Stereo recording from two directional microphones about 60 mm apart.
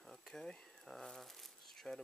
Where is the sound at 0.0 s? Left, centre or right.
Centre.